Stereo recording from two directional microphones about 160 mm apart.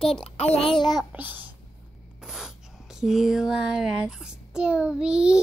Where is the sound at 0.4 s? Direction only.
40° left (ahead or behind).